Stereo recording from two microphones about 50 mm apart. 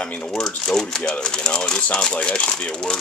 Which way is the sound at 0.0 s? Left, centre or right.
Left.